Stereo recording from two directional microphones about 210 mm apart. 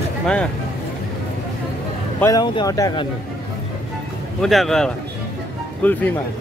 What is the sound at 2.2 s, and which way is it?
Speech, 20° left (ahead or behind).